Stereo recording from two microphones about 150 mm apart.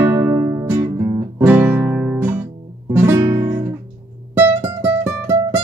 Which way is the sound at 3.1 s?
20° right (ahead or behind).